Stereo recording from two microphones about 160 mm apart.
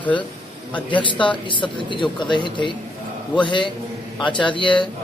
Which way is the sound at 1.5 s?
30° left (ahead or behind).